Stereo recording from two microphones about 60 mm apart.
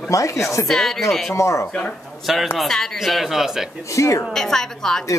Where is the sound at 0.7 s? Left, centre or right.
Centre.